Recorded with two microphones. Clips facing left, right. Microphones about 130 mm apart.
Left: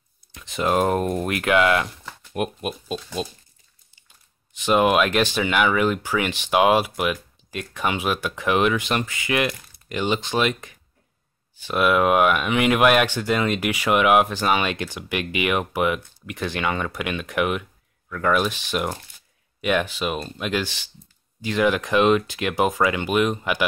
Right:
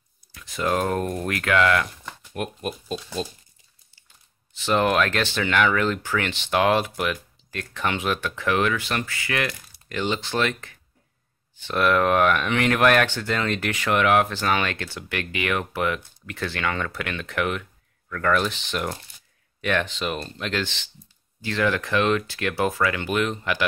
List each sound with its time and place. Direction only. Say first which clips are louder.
0.3 s speech: left 2 dB; 20° left (ahead or behind)
4.6 s speech: left 3 dB; 15° left (ahead or behind)